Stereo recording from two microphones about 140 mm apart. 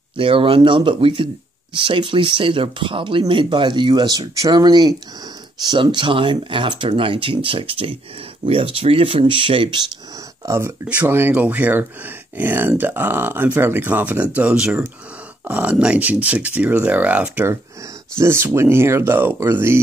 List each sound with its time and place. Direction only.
0.2 s speech: 40° right (ahead or behind)
10.4 s speech: 20° right (ahead or behind)